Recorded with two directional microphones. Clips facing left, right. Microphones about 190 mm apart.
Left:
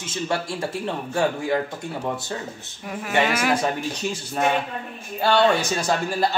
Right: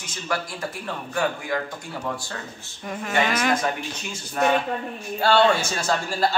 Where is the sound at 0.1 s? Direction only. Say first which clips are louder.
Left 3 dB; 25° left (ahead or behind).